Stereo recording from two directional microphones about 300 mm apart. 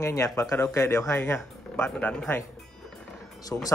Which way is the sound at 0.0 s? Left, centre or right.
Centre.